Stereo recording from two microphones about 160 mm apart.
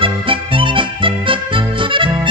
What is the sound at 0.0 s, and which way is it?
Music, 35° right (ahead or behind).